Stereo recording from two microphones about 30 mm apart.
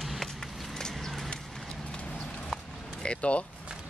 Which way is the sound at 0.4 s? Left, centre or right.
Centre.